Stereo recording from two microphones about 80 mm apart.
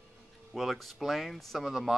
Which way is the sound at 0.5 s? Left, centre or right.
Centre.